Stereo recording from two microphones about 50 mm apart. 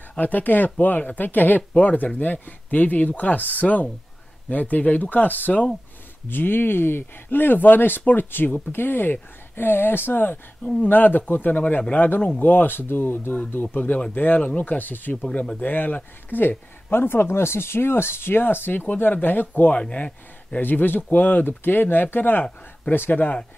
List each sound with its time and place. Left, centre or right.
0.2 s speech: left
6.2 s speech: left
15.3 s speech: left
15.6 s speech: left
19.8 s speech: left
20.6 s speech: left